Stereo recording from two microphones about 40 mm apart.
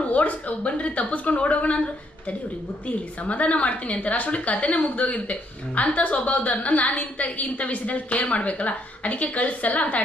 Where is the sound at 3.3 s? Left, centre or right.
Left.